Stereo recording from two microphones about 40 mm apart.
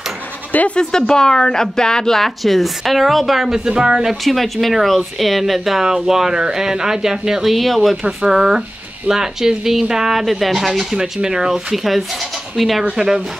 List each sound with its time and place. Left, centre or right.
0.7 s speech: centre
3.5 s speech: centre
4.1 s speech: centre
7.5 s speech: centre
7.9 s speech: centre
11.2 s speech: centre
11.7 s speech: centre
12.9 s speech: centre